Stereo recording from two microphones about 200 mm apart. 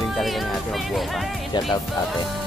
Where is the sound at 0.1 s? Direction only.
Centre (ahead or behind).